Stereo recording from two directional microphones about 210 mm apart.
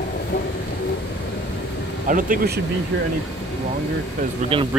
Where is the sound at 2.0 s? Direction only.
40° right (ahead or behind).